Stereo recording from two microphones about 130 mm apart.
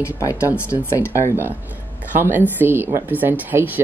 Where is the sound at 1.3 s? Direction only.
15° right (ahead or behind).